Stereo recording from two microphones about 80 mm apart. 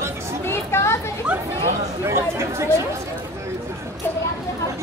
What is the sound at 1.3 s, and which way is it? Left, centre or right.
Chatter, centre.